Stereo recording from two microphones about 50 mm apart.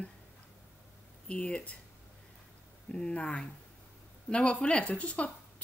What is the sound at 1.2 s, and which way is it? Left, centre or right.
Speech, centre.